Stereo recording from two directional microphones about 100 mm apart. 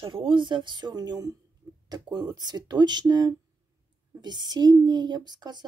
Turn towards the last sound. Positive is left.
turn(degrees=-45)  # may be behind; listen again after turning